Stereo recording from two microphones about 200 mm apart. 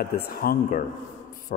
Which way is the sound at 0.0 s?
50° left (ahead or behind).